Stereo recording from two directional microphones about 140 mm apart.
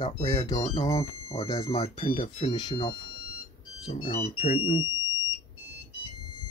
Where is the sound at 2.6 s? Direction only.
35° left (ahead or behind).